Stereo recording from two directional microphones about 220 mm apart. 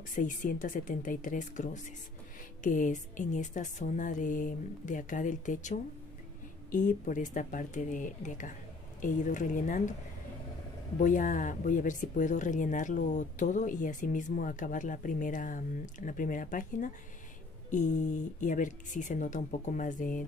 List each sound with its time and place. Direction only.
0.1 s speech: 35° left (ahead or behind)
11.0 s speech: 35° left (ahead or behind)